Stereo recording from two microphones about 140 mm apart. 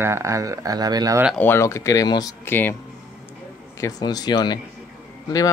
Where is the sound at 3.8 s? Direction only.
25° left (ahead or behind).